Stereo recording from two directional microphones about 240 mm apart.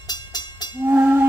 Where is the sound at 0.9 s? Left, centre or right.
Centre.